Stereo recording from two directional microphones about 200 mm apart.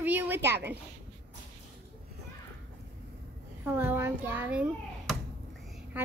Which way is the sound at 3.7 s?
10° right (ahead or behind).